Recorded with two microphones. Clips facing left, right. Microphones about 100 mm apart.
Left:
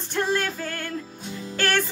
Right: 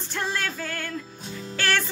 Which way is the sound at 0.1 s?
45° left (ahead or behind).